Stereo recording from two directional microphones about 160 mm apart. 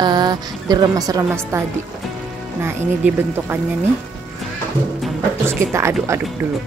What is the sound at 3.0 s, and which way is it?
Speech, 15° right (ahead or behind).